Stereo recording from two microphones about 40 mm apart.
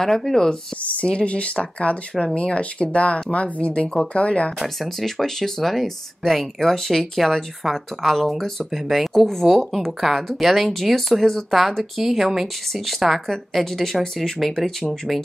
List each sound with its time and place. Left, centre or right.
0.0 s speech: centre
1.0 s speech: left
5.0 s speech: centre